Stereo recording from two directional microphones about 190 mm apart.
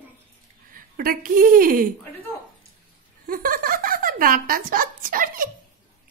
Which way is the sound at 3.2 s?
50° right (ahead or behind).